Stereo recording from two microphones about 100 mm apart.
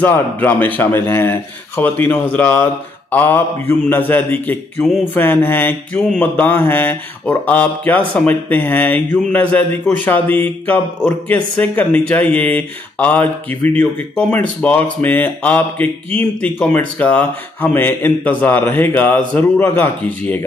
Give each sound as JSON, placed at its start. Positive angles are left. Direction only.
{"t": 0.0, "sound": "speech", "side_deg": 20}